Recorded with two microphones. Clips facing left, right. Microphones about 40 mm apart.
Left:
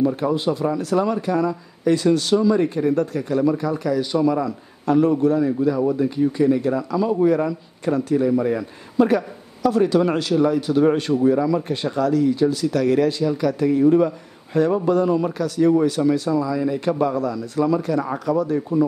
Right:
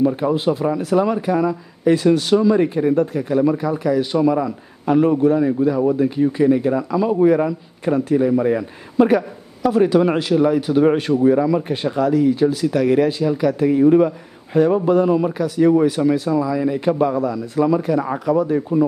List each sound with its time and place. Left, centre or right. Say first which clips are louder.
0.2 s a man's voice: right 2 dB; centre